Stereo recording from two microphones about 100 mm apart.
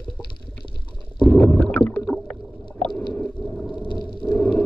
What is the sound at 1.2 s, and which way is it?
Stomach rumble, 10° left (ahead or behind).